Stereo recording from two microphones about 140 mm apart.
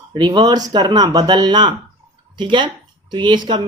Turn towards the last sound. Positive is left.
turn(degrees=-35)  # may be behind; listen again after turning